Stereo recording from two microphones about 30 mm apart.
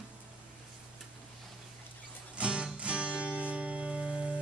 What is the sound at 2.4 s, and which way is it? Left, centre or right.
Music, right.